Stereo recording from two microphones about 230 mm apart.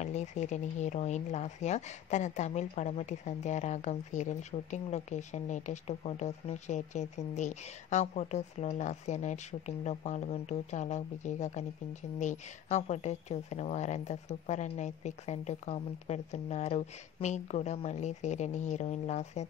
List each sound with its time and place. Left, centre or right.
0.0 s speech: left